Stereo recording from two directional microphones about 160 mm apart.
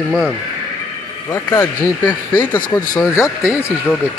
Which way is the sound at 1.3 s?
15° left (ahead or behind).